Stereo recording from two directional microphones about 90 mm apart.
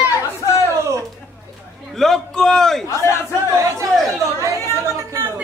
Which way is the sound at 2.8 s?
35° left (ahead or behind).